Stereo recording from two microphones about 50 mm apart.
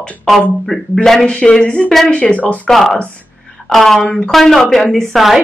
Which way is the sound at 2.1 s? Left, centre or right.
Left.